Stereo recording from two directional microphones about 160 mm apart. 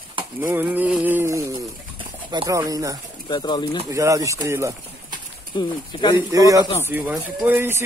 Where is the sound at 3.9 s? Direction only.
20° right (ahead or behind).